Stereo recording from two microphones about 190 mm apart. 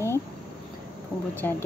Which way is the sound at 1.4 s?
10° left (ahead or behind).